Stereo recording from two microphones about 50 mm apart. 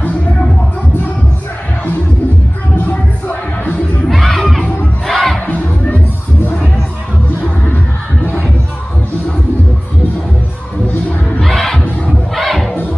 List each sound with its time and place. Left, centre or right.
2.8 s music: left
4.1 s crowd: centre
5.5 s music: left
7.4 s music: left
10.9 s music: left
11.4 s crowd: centre